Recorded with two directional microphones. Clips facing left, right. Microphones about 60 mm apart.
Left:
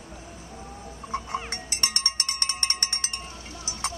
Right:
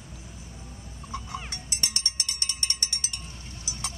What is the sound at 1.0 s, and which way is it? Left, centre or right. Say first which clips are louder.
Cowbell: left 5 dB; left.